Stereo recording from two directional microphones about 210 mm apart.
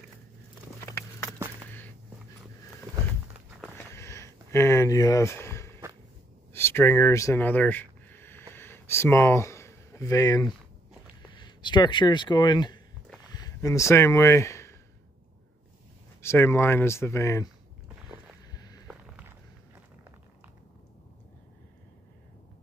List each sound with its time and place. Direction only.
0.8 s walk: 15° left (ahead or behind)
1.7 s a sound: 10° left (ahead or behind)
3.7 s a sound: 10° left (ahead or behind)
6.5 s speech: 10° left (ahead or behind)
8.5 s a sound: 10° left (ahead or behind)
11.3 s speech: 20° left (ahead or behind)
16.2 s speech: 10° left (ahead or behind)
18.0 s boat: 5° right (ahead or behind)
18.5 s walk: 20° left (ahead or behind)
18.9 s walk: 5° right (ahead or behind)